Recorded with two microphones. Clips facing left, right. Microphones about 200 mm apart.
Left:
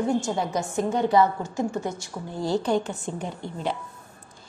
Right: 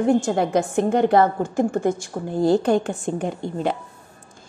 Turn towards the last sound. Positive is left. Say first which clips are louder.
# right 6 dB
turn(degrees=-55)  # may be behind; listen again after turning